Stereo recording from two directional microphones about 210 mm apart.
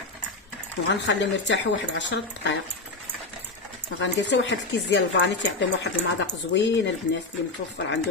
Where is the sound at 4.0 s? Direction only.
60° left (ahead or behind).